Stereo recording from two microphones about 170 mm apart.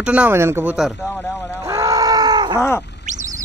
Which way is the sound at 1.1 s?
15° left (ahead or behind).